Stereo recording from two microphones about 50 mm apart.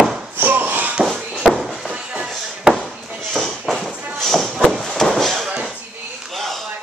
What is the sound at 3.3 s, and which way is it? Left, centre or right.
Clip-clop, centre.